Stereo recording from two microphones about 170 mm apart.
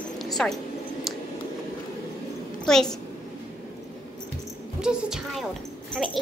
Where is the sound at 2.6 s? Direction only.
5° left (ahead or behind).